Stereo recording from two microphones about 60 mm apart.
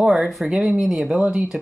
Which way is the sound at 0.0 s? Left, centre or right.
Centre.